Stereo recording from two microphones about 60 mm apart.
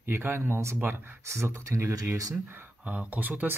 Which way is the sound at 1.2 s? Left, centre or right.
Right.